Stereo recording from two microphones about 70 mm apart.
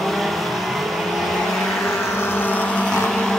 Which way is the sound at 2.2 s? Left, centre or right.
Left.